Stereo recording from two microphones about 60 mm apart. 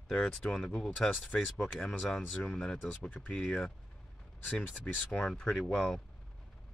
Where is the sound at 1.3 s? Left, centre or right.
Left.